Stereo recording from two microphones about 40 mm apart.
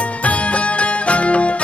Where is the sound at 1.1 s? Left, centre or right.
Left.